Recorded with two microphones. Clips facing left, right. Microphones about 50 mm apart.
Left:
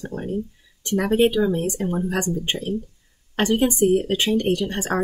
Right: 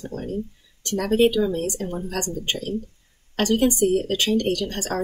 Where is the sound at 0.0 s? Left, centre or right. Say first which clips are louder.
Left 2 dB; left.